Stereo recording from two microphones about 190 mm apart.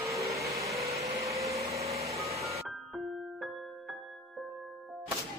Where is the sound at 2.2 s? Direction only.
35° right (ahead or behind).